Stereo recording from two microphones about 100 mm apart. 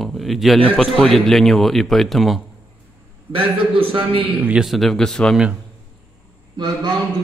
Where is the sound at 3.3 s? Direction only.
65° right (ahead or behind).